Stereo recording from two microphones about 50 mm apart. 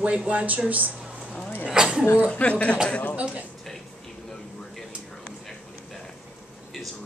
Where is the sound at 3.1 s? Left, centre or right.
Right.